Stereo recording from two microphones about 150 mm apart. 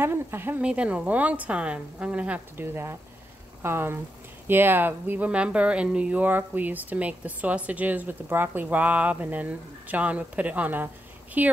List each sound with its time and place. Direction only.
0.0 s speech: 15° right (ahead or behind)